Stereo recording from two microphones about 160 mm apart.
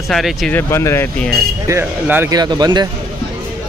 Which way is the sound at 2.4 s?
25° right (ahead or behind).